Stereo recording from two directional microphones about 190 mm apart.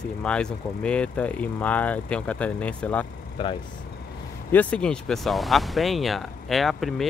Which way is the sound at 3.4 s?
25° left (ahead or behind).